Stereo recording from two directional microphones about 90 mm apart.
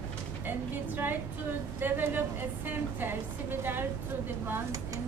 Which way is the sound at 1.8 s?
25° right (ahead or behind).